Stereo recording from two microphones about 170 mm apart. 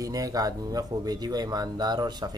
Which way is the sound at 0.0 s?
20° right (ahead or behind).